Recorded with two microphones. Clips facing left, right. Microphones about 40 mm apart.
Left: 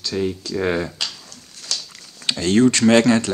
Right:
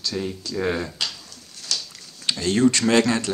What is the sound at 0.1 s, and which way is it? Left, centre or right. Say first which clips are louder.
Speech: left 9 dB; centre.